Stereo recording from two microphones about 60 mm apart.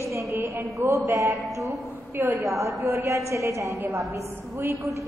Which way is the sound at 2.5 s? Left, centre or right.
Right.